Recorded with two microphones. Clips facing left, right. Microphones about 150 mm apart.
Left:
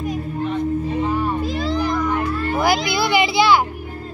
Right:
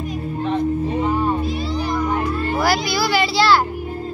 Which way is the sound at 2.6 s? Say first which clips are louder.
Left 1 dB; 20° left (ahead or behind).